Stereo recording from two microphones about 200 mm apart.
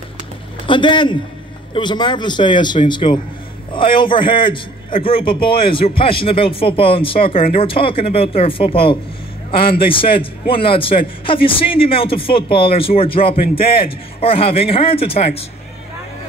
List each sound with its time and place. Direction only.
0.7 s a man's voice: 25° left (ahead or behind)
7.3 s speech: 45° left (ahead or behind)
7.6 s a man's voice: 25° left (ahead or behind)